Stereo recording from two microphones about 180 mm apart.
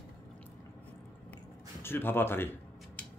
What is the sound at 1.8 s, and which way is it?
Speech, 10° left (ahead or behind).